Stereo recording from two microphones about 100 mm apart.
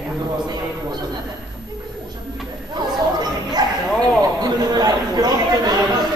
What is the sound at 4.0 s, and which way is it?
Chatter, 40° right (ahead or behind).